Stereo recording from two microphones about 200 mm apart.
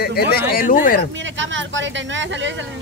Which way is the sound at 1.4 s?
70° right (ahead or behind).